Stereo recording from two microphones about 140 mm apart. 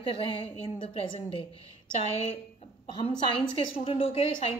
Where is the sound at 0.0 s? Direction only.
40° left (ahead or behind).